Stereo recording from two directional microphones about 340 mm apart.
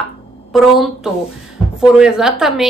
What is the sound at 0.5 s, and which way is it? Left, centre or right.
A woman's voice, centre.